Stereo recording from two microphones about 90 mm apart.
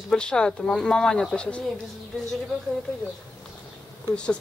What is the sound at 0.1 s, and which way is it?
Speech, 10° left (ahead or behind).